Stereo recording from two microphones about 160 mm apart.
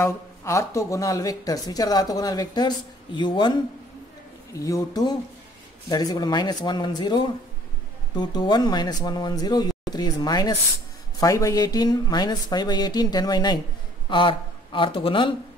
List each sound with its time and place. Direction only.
0.0 s speech: 20° left (ahead or behind)
4.6 s speech: 20° left (ahead or behind)